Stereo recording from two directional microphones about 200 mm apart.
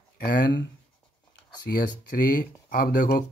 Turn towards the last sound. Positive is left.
turn(degrees=45)  # may be behind; listen again after turning